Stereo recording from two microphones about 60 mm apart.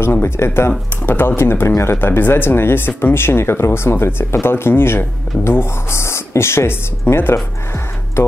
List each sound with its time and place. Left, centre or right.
0.2 s speech: left